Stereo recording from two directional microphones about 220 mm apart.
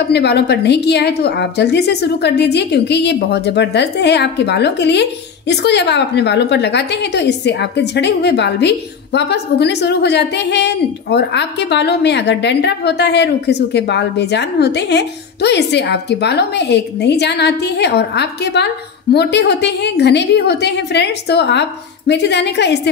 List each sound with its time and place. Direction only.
0.0 s a woman's voice: 50° left (ahead or behind)